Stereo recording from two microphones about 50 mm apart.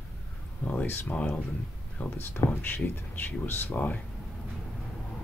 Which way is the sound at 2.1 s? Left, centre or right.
Left.